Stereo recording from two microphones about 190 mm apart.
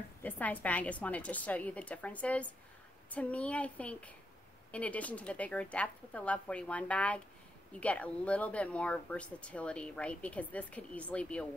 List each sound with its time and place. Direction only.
0.2 s speech: 10° left (ahead or behind)